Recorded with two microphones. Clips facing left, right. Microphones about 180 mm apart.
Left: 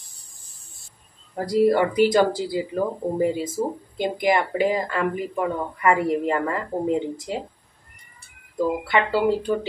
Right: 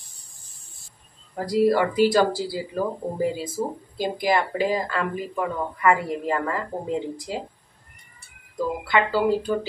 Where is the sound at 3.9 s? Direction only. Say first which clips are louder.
Left 1 dB; 20° left (ahead or behind).